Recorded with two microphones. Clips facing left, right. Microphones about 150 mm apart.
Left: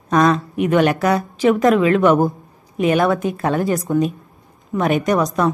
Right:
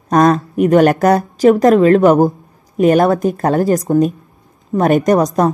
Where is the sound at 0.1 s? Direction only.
45° right (ahead or behind).